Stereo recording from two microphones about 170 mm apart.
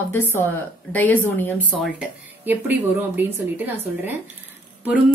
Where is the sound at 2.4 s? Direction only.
10° right (ahead or behind).